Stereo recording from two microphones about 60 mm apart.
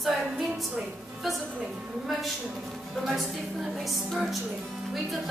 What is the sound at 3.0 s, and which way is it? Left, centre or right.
A woman's voice, centre.